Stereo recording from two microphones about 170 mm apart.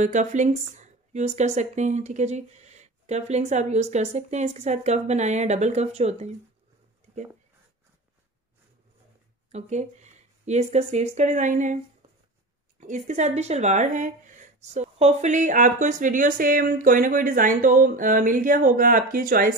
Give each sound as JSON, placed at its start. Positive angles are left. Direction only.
{"t": 0.0, "sound": "speech", "side_deg": -45}
{"t": 9.5, "sound": "speech", "side_deg": -40}
{"t": 12.8, "sound": "speech", "side_deg": -45}